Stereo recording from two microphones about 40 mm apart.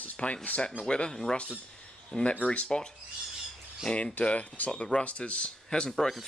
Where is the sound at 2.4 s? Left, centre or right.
Left.